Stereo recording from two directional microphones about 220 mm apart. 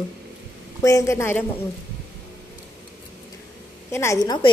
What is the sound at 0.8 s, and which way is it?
Speech, 15° left (ahead or behind).